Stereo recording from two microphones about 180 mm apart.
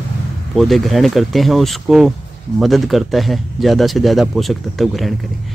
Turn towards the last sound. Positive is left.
turn(degrees=0)  # may be behind; listen again after turning